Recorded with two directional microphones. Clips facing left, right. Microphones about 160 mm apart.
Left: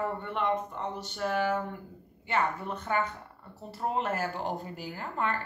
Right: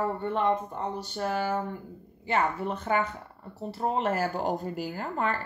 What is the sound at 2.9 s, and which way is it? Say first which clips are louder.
Speech: right 3 dB; 20° right (ahead or behind).